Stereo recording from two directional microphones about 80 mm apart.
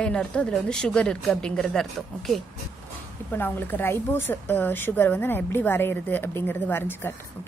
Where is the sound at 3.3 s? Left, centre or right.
Left.